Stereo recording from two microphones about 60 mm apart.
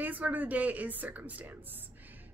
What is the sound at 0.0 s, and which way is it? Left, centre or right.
A woman's voice, right.